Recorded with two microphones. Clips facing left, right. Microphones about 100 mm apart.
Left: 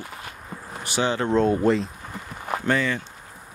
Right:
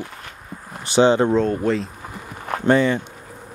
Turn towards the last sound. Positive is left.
turn(degrees=-25)  # may be behind; listen again after turning